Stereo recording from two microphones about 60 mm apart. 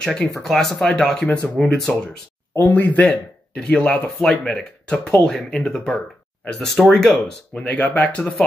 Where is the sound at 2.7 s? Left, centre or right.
Left.